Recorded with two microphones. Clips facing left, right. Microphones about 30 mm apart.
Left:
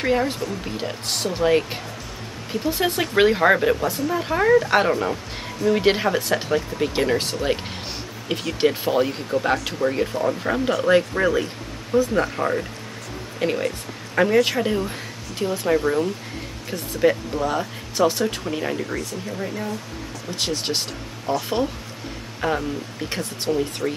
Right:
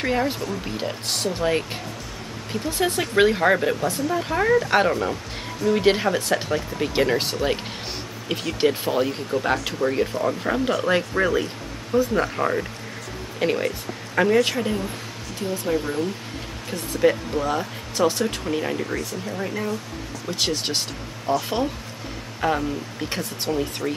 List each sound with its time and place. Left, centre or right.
0.0 s speech: centre
8.3 s a man's voice: centre
15.7 s speech: left
17.0 s speech: centre
21.4 s speech: centre